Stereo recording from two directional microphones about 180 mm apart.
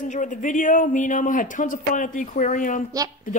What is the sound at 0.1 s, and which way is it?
Speech, 45° left (ahead or behind).